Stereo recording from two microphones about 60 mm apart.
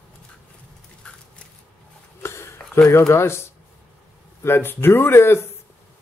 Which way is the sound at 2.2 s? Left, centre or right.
Left.